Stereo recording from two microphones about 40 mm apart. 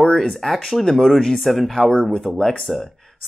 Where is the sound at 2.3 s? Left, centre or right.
Centre.